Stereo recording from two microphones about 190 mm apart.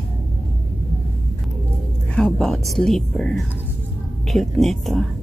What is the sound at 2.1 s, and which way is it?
Music, 5° left (ahead or behind).